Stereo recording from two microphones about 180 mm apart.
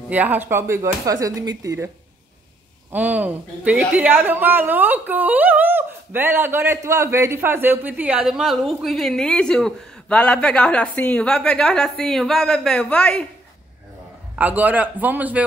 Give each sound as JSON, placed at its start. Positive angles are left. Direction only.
{"t": 0.1, "sound": "speech", "side_deg": -10}
{"t": 2.9, "sound": "a woman's voice", "side_deg": -10}
{"t": 14.3, "sound": "speech", "side_deg": -10}